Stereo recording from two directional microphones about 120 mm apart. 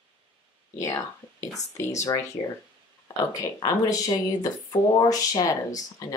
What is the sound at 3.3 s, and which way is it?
Speech, 35° left (ahead or behind).